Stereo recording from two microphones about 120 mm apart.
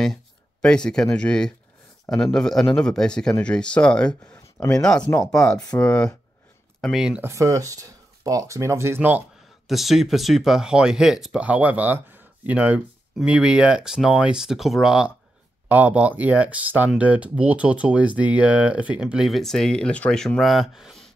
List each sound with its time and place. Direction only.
0.0 s speech: 5° left (ahead or behind)
4.3 s a sound: 20° left (ahead or behind)
5.3 s speech: 5° left (ahead or behind)
6.8 s speech: 5° right (ahead or behind)
7.2 s speech: 25° right (ahead or behind)
9.7 s speech: centre (ahead or behind)